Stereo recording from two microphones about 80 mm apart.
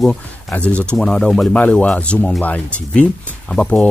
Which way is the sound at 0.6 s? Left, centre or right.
Centre.